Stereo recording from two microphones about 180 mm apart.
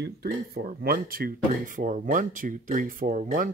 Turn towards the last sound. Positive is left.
turn(degrees=-50)  # may be behind; listen again after turning